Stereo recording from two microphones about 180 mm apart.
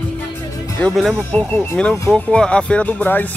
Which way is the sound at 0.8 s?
5° left (ahead or behind).